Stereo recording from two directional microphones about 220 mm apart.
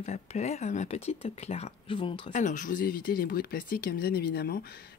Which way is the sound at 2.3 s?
35° left (ahead or behind).